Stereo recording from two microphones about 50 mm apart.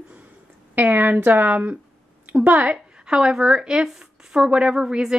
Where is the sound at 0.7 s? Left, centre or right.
Right.